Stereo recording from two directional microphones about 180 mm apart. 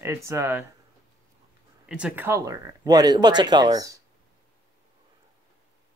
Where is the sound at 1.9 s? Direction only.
5° right (ahead or behind).